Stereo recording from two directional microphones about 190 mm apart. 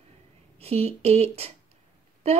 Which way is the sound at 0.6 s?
30° right (ahead or behind).